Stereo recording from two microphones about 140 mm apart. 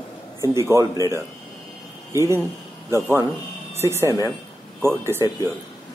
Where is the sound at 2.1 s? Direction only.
20° right (ahead or behind).